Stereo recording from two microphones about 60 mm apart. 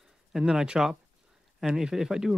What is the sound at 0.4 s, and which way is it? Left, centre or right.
Speech, centre.